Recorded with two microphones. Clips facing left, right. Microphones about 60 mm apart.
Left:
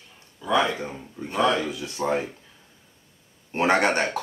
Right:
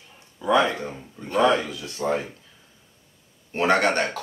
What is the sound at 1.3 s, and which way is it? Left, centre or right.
Speech, right.